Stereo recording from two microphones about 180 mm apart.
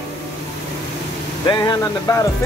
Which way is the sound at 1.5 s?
20° left (ahead or behind).